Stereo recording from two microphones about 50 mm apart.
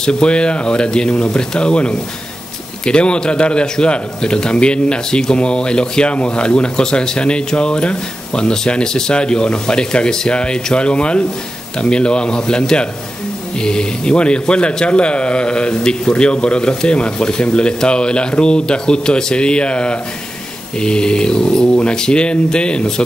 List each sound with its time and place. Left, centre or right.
0.0 s a man's voice: centre